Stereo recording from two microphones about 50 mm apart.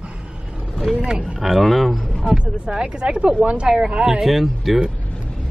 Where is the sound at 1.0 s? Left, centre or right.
Centre.